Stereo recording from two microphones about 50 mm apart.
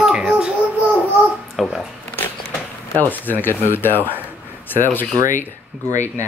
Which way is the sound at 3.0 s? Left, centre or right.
Left.